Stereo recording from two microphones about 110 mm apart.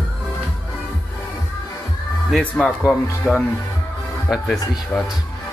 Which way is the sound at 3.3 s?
5° left (ahead or behind).